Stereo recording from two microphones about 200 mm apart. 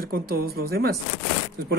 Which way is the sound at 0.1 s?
50° right (ahead or behind).